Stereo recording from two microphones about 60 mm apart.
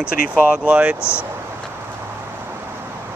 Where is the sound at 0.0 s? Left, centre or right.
Right.